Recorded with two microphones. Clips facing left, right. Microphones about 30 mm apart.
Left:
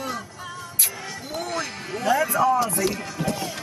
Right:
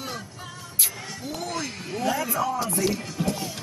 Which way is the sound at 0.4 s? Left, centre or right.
Centre.